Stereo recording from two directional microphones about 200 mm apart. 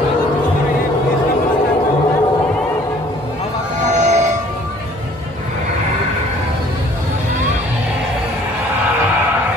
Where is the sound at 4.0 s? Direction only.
35° right (ahead or behind).